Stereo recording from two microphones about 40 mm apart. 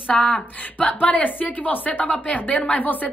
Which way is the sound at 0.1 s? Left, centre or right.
Centre.